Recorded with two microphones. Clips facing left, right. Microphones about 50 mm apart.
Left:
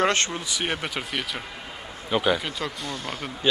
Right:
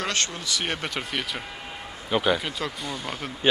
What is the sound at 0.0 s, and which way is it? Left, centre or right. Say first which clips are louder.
Speech: left 6 dB; left.